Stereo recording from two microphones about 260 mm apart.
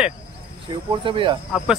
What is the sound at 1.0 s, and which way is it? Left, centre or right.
Speech, centre.